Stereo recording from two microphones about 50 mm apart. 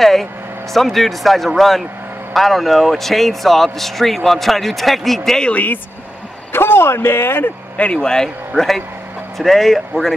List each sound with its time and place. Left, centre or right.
0.0 s speech: centre
6.5 s speech: left
7.7 s a man's voice: left; by 10.1 s centre